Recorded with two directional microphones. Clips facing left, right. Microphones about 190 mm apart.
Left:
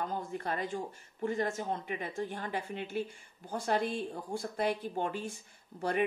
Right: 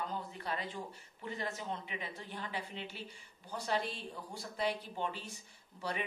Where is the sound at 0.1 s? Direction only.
50° left (ahead or behind).